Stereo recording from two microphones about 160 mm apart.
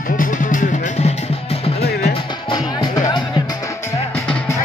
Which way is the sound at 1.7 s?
80° left.